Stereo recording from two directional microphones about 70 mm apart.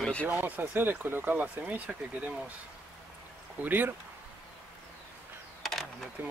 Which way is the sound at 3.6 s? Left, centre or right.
Right.